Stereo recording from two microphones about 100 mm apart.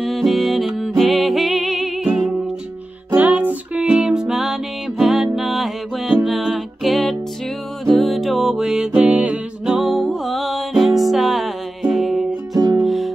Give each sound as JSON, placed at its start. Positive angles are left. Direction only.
{"t": 0.0, "sound": "music", "side_deg": 0}
{"t": 3.2, "sound": "music", "side_deg": -15}
{"t": 12.5, "sound": "music", "side_deg": -35}
{"t": 12.8, "sound": "music", "side_deg": 0}